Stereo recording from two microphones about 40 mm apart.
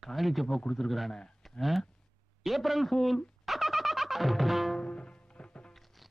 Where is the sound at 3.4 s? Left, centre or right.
Centre.